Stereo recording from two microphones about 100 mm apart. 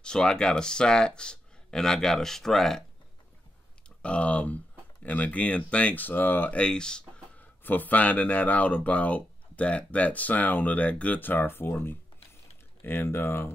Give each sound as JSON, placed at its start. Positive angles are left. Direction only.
{"t": 0.0, "sound": "speech", "side_deg": 10}
{"t": 4.0, "sound": "speech", "side_deg": 10}